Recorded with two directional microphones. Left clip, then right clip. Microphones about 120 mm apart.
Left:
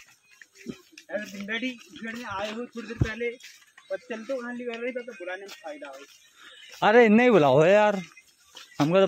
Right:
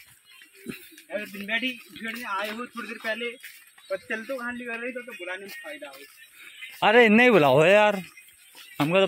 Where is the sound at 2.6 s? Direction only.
30° left (ahead or behind).